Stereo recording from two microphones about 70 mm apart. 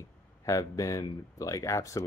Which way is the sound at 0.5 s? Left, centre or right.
Left.